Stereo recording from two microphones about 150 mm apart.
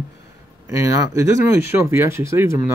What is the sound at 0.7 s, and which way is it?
Speech, 20° right (ahead or behind).